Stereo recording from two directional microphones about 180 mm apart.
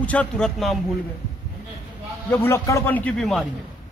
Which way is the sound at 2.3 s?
15° left (ahead or behind).